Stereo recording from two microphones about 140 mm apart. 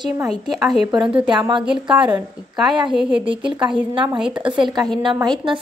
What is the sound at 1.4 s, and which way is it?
Speech, 30° right (ahead or behind).